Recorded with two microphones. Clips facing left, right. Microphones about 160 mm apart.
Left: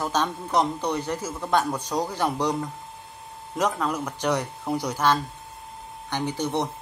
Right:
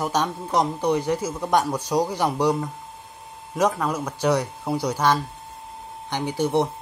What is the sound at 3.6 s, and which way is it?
Speech, 10° right (ahead or behind).